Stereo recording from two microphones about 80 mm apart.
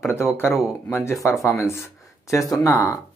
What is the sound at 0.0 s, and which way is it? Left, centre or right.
Speech, left.